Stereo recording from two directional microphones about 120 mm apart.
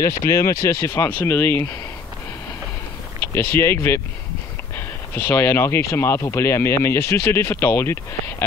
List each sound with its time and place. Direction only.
0.3 s speech: 25° left (ahead or behind)
3.2 s speech: 20° left (ahead or behind)